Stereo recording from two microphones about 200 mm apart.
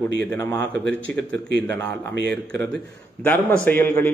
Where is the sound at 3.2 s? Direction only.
10° left (ahead or behind).